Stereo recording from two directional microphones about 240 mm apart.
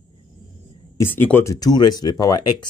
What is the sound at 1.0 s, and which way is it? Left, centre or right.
Speech, centre.